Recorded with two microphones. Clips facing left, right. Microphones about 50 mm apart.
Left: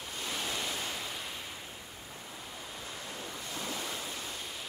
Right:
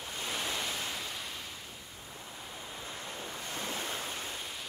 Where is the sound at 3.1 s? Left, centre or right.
Right.